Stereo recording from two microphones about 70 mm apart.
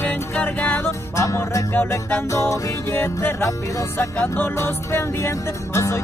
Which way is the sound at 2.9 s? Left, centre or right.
Left.